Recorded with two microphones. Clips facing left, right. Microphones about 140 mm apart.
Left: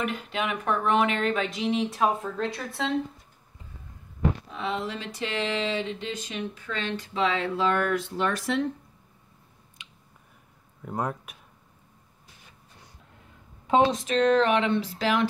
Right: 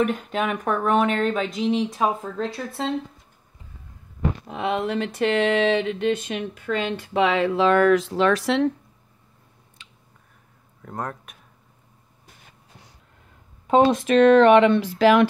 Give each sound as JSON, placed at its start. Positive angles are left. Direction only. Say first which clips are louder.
{"t": 0.0, "sound": "speech", "louder": "right 6 dB", "side_deg": -45}
{"t": 1.6, "sound": "speech", "louder": "right 4 dB", "side_deg": 0}
{"t": 4.5, "sound": "a sound", "louder": "right 6 dB", "side_deg": -65}
{"t": 9.8, "sound": "finger snapping", "louder": "even", "side_deg": 15}
{"t": 10.8, "sound": "speech", "louder": "left 1 dB", "side_deg": 5}
{"t": 13.9, "sound": "a sound", "louder": "right 7 dB", "side_deg": -65}